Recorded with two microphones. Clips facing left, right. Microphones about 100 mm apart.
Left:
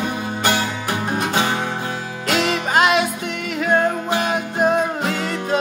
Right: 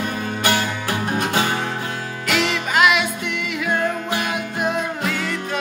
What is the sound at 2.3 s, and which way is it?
Music, 35° left (ahead or behind).